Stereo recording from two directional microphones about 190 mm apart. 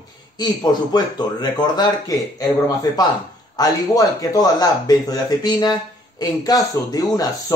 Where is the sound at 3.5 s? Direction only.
20° left (ahead or behind).